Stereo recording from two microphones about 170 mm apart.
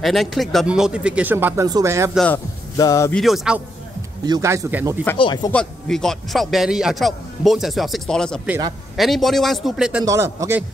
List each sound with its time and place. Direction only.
0.0 s a man's voice: centre (ahead or behind); by 2.1 s 15° right (ahead or behind)
2.1 s a man's voice: 10° left (ahead or behind)
2.8 s speech: 20° left (ahead or behind)
3.1 s a man's voice: centre (ahead or behind)
4.3 s speech: 15° right (ahead or behind)
5.1 s speech: 25° left (ahead or behind)
5.5 s a man's voice: 5° left (ahead or behind)
10.0 s speech: 15° right (ahead or behind)